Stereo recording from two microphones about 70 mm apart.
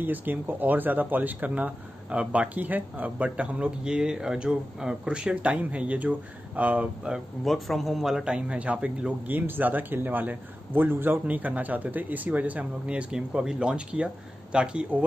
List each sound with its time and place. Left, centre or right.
0.0 s a man's voice: right
7.4 s speech: centre
9.3 s a man's voice: right